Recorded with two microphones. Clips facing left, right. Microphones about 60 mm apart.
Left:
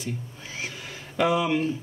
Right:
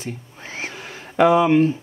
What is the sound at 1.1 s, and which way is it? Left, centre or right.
Speech, right.